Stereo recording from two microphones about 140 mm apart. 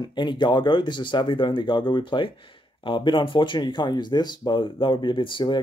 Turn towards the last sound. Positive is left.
turn(degrees=35)  # may be behind; listen again after turning